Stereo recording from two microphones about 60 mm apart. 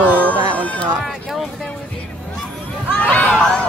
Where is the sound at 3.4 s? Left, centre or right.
Centre.